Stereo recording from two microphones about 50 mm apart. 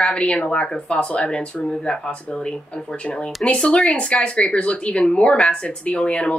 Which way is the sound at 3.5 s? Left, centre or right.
Left.